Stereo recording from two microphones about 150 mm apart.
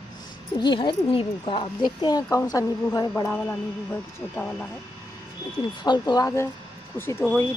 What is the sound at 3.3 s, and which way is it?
Speech, 10° left (ahead or behind).